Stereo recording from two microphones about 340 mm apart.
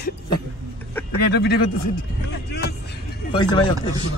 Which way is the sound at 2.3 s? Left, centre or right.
Left.